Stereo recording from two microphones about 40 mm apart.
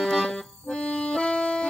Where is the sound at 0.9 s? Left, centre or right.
Left.